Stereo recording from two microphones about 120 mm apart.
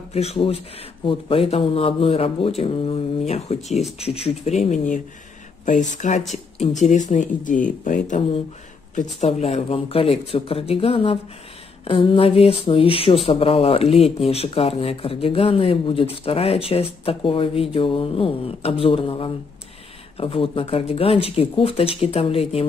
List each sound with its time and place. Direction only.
0.1 s speech: 60° left (ahead or behind); by 8.2 s 90° left
8.9 s speech: 75° left (ahead or behind); by 22.7 s 55° left (ahead or behind)